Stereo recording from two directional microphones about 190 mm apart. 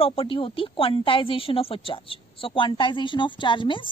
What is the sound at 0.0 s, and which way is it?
A woman's voice, 30° left (ahead or behind).